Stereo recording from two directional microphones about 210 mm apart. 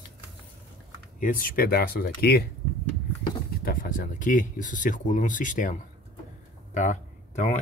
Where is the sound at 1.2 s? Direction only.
40° left (ahead or behind).